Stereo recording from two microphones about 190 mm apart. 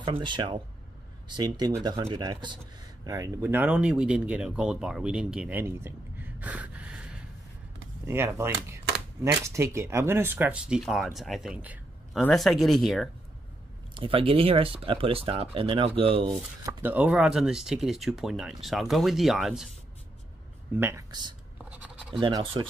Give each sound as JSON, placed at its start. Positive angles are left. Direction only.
{"t": 0.0, "sound": "speech", "side_deg": -25}
{"t": 12.2, "sound": "speech", "side_deg": 5}
{"t": 13.9, "sound": "speech", "side_deg": -30}
{"t": 16.6, "sound": "speech", "side_deg": -10}
{"t": 20.7, "sound": "speech", "side_deg": -15}
{"t": 21.6, "sound": "scratch", "side_deg": -5}
{"t": 22.2, "sound": "speech", "side_deg": -25}